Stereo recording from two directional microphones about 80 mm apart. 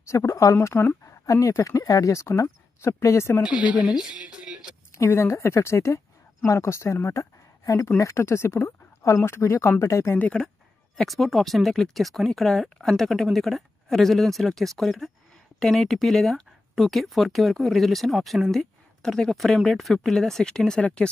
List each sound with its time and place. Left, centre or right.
0.1 s speech: left
1.2 s speech: left
3.4 s speech: centre
4.9 s speech: left
10.1 s speech: centre
11.0 s speech: centre